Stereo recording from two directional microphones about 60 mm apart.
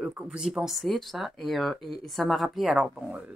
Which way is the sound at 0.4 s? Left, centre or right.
Centre.